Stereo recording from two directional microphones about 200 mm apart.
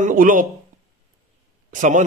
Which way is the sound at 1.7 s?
40° right (ahead or behind).